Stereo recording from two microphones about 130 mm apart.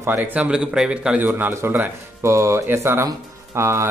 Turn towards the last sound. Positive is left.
turn(degrees=-20)  # may be behind; listen again after turning